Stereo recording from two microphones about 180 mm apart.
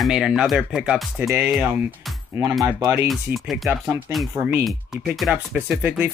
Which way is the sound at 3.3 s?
Centre (ahead or behind).